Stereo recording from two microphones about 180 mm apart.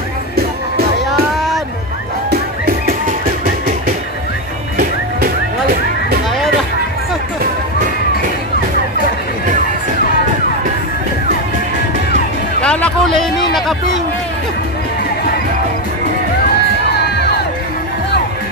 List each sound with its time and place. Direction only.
0.4 s music: 60° right (ahead or behind)
4.7 s music: 60° right (ahead or behind)
12.6 s a sound: 5° left (ahead or behind)